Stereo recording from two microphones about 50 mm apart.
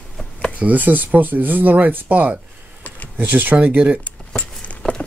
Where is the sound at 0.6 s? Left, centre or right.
Right.